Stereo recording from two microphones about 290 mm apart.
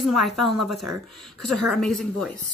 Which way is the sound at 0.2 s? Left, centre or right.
Centre.